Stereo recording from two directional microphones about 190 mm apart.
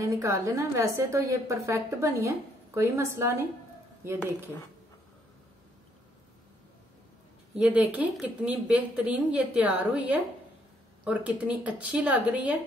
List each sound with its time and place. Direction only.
0.0 s a woman's voice: 15° right (ahead or behind)
7.5 s a woman's voice: 10° right (ahead or behind)